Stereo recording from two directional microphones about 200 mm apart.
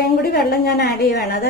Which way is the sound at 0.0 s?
50° left (ahead or behind).